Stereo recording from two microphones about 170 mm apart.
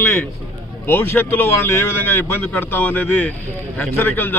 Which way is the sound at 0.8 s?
10° left (ahead or behind).